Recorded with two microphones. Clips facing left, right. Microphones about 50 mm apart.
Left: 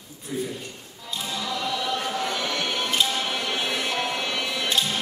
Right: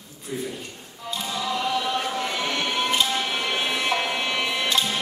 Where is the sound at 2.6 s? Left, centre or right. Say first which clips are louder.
Right 3 dB; right.